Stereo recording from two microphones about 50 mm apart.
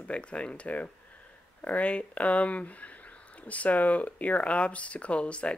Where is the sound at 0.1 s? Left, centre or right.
Left.